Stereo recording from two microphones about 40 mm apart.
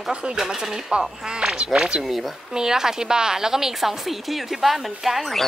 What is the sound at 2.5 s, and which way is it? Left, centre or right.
A woman's voice, centre.